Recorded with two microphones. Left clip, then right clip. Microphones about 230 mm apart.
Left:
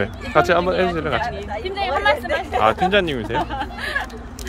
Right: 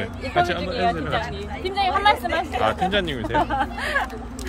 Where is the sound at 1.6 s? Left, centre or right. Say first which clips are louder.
Right 1 dB; right.